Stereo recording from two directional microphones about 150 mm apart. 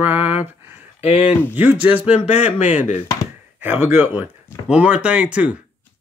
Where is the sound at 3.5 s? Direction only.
15° right (ahead or behind).